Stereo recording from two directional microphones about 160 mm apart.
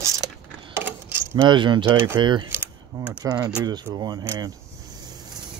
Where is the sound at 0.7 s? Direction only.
15° right (ahead or behind).